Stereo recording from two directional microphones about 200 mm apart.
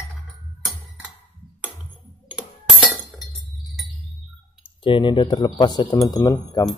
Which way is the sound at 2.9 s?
10° left (ahead or behind).